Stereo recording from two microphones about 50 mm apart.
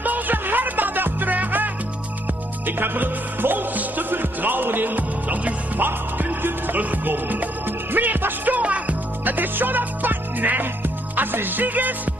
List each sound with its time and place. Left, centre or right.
0.0 s music: right